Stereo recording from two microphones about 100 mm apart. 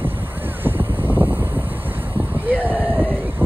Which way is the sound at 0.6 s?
20° right (ahead or behind).